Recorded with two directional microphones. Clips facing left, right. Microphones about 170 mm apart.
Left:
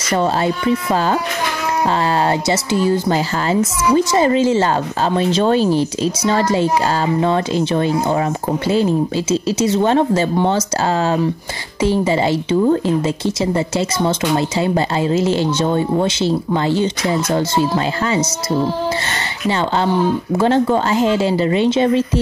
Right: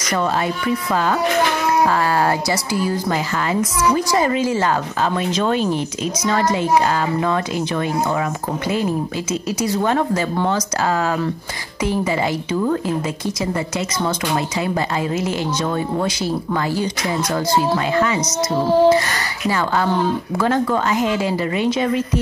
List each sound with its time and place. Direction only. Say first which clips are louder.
0.1 s a woman's voice: left 3 dB; 30° left (ahead or behind)
2.2 s a woman's voice: left 3 dB; 25° left (ahead or behind)
11.8 s a woman's voice: left 4 dB; 30° left (ahead or behind)
20.3 s a woman's voice: left 4 dB; 25° left (ahead or behind)